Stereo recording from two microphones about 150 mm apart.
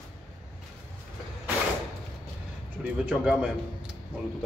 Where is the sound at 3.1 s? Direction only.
5° right (ahead or behind).